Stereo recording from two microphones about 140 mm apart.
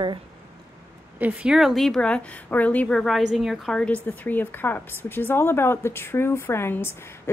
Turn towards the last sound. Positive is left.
turn(degrees=15)  # may be behind; listen again after turning